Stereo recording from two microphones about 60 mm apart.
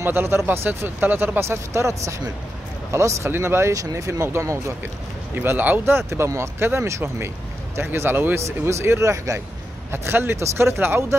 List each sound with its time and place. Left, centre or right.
0.0 s speech: right
1.4 s speech: right
3.3 s speech: right
3.7 s speech: right
5.3 s speech: right
6.0 s speech: right
8.5 s speech: right
9.8 s speech: right